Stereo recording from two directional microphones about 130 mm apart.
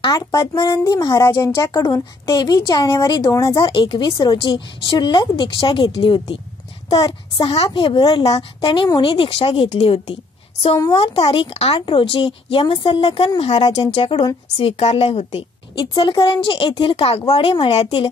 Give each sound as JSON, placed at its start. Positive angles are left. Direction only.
{"t": 0.0, "sound": "speech", "side_deg": 30}
{"t": 8.0, "sound": "speech", "side_deg": 30}